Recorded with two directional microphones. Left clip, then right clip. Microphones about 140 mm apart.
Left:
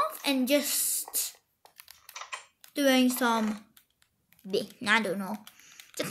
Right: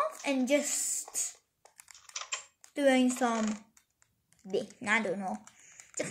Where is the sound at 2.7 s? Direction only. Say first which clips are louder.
Left 2 dB; 40° left (ahead or behind).